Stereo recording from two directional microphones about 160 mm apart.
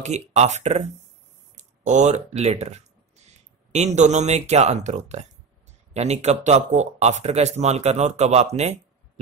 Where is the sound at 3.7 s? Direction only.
45° right (ahead or behind).